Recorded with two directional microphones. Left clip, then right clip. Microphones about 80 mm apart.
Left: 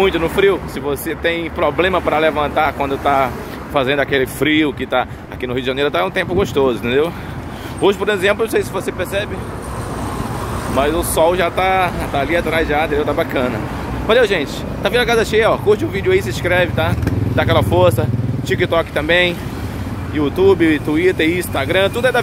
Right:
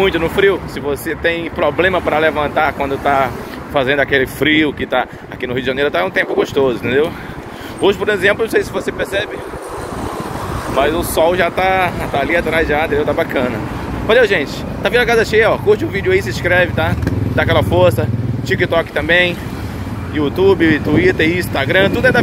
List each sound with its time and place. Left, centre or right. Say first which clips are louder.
0.0 s speech: right 1 dB; left
11.0 s speech: right 1 dB; left
13.0 s speech: right 1 dB; left